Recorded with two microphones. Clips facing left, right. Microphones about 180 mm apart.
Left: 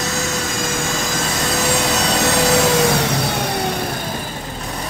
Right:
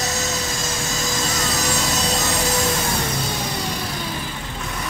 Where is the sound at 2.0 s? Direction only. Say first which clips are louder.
Left 6 dB; 75° left (ahead or behind).